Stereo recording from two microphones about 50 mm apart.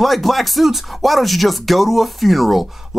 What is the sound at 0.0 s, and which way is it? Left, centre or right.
Speech, centre.